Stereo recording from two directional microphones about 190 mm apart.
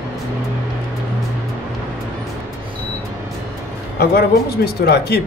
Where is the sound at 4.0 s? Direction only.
55° left (ahead or behind).